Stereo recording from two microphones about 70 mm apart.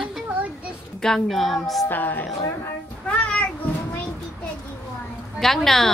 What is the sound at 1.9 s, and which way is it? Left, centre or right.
Speech, left.